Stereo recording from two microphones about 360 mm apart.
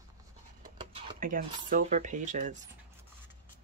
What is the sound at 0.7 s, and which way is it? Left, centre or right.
Speech, centre.